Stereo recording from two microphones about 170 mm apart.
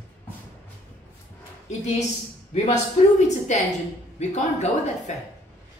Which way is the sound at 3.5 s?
45° left (ahead or behind).